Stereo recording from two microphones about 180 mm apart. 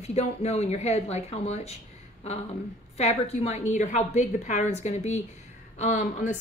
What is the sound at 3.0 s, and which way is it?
A woman's voice, 35° left (ahead or behind).